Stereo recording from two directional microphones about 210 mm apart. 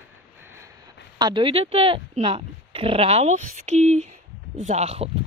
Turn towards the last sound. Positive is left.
turn(degrees=-30)  # may be behind; listen again after turning